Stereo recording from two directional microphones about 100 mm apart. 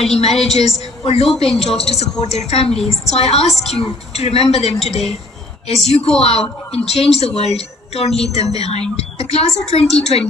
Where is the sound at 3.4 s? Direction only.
Centre (ahead or behind).